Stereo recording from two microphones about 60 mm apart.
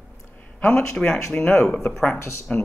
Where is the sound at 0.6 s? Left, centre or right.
Left.